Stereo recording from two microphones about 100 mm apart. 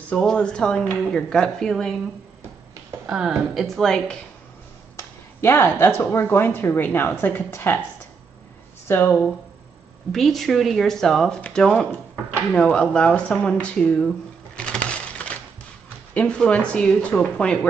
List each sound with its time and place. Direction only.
0.1 s speech: 10° left (ahead or behind)
3.1 s speech: 5° right (ahead or behind)
5.4 s a woman's voice: 25° left (ahead or behind)
8.8 s speech: 20° left (ahead or behind)
10.1 s speech: centre (ahead or behind)